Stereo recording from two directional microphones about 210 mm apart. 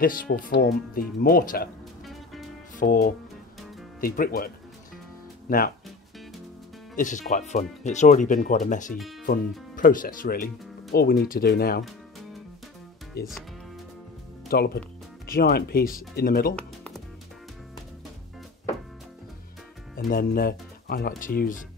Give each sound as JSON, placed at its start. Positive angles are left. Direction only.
{"t": 0.0, "sound": "speech", "side_deg": 40}
{"t": 2.8, "sound": "speech", "side_deg": 40}
{"t": 5.5, "sound": "speech", "side_deg": 45}
{"t": 7.0, "sound": "speech", "side_deg": 40}
{"t": 13.2, "sound": "speech", "side_deg": 45}
{"t": 14.5, "sound": "speech", "side_deg": 45}
{"t": 16.5, "sound": "music", "side_deg": 5}
{"t": 20.0, "sound": "speech", "side_deg": 45}